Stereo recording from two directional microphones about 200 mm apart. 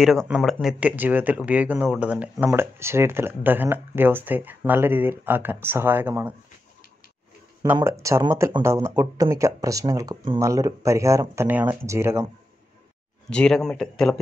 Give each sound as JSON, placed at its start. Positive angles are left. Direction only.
{"t": 0.0, "sound": "speech", "side_deg": 0}
{"t": 7.6, "sound": "speech", "side_deg": -10}
{"t": 13.3, "sound": "speech", "side_deg": 5}